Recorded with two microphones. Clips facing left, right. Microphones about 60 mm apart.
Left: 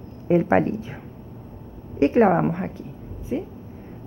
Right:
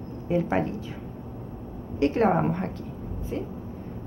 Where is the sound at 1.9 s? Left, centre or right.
Left.